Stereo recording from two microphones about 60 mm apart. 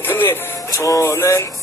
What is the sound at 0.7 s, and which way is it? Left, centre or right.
Music, left.